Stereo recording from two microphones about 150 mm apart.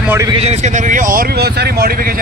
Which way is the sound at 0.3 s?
45° right (ahead or behind).